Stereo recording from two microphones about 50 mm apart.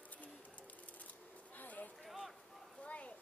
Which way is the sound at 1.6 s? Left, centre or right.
Left.